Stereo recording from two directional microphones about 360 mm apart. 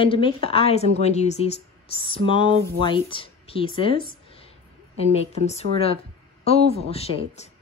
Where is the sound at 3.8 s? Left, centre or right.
Centre.